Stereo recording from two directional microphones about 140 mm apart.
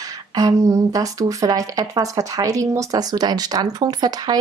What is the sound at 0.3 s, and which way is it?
Speech, 25° right (ahead or behind).